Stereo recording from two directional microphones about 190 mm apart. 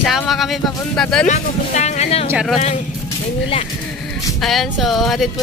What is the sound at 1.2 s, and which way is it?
Speech, 35° left (ahead or behind).